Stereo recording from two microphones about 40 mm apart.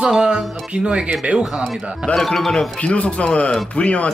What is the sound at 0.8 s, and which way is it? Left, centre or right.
Speech, right.